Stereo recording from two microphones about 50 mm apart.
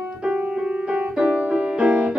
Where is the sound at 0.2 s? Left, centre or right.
Centre.